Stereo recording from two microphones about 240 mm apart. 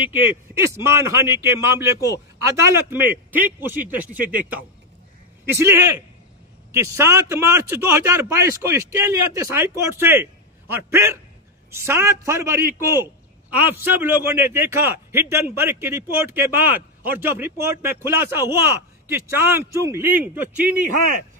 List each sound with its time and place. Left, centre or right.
0.7 s a man's voice: centre